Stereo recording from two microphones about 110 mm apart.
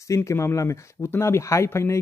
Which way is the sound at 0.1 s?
25° left (ahead or behind).